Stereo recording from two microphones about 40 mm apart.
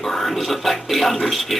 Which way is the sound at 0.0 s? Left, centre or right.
Centre.